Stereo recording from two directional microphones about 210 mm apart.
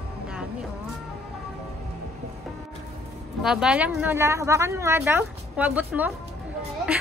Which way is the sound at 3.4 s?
5° right (ahead or behind).